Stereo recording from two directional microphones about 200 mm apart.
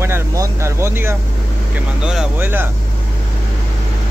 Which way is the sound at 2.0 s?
5° right (ahead or behind).